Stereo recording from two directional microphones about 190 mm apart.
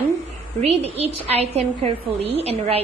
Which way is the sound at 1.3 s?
35° right (ahead or behind).